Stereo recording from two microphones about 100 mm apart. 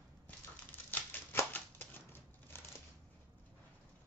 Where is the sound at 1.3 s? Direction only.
20° left (ahead or behind).